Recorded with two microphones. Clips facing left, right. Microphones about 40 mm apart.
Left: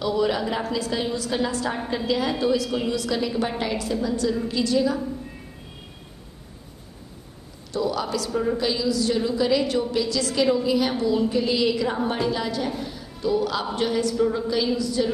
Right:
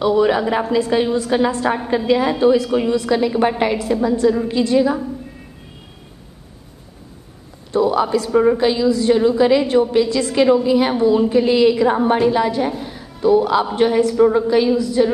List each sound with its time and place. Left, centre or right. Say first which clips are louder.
0.0 s a woman's voice: right 8 dB; right
7.7 s a man's voice: right 9 dB; right
8.3 s a woman's voice: right 11 dB; right
8.5 s a woman's voice: right 7 dB; right